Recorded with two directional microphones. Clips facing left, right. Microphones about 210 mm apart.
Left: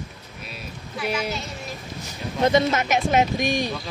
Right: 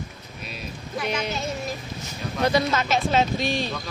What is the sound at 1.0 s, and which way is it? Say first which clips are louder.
Speech: left 1 dB; 5° left (ahead or behind).